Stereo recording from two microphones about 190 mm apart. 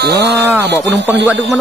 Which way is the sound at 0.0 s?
60° right (ahead or behind).